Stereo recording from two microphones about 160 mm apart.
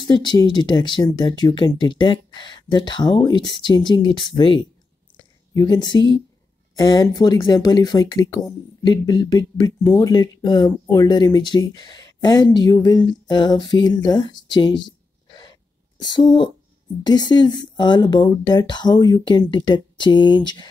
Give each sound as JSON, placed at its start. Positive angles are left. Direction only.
{"t": 0.0, "sound": "speech", "side_deg": 25}
{"t": 5.1, "sound": "a sound", "side_deg": 25}
{"t": 6.8, "sound": "speech", "side_deg": 25}
{"t": 16.0, "sound": "speech", "side_deg": 25}